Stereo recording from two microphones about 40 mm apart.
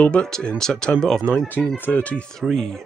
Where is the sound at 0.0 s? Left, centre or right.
Left.